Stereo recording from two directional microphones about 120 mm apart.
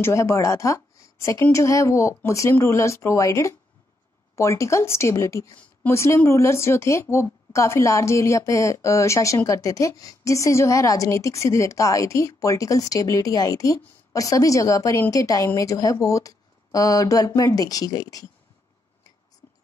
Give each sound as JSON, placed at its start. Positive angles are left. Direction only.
{"t": 0.0, "sound": "a woman's voice", "side_deg": 25}